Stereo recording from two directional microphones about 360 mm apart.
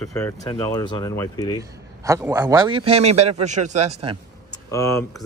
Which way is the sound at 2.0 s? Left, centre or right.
Centre.